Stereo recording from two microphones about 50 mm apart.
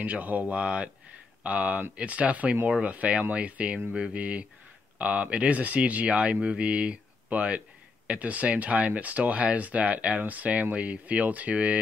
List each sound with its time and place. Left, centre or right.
0.0 s speech: right